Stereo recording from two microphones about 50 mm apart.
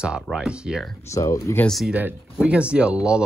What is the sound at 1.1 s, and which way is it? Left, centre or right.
Speech, left.